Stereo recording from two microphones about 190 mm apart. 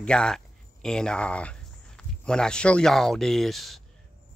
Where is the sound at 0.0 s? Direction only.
5° left (ahead or behind).